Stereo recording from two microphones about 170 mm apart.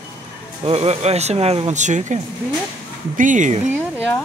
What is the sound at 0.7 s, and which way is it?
Speech, 40° right (ahead or behind).